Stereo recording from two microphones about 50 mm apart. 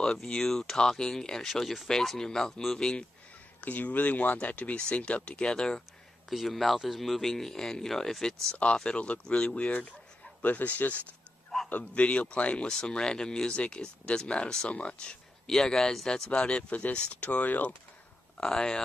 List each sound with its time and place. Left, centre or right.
0.0 s speech: centre
3.6 s speech: left; by 5.8 s centre
6.3 s speech: centre
8.7 s speech: left
15.4 s speech: centre
16.3 s speech: left
18.4 s speech: centre